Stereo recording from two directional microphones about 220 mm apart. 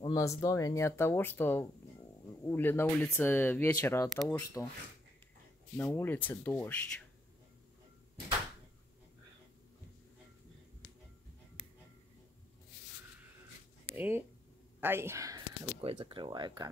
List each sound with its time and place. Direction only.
0.0 s speech: 15° left (ahead or behind)
5.8 s speech: 10° left (ahead or behind)
13.9 s speech: 10° right (ahead or behind)
15.8 s speech: 25° right (ahead or behind)